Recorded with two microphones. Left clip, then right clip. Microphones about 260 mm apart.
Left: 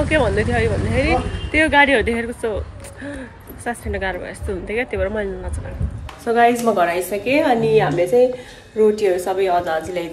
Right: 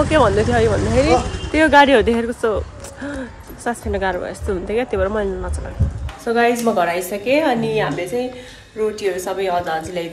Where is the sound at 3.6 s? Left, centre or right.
Centre.